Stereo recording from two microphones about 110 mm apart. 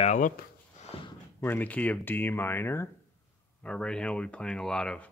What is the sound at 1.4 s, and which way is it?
Speech, 15° left (ahead or behind).